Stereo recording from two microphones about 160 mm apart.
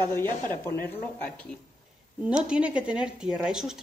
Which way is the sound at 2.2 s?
5° right (ahead or behind).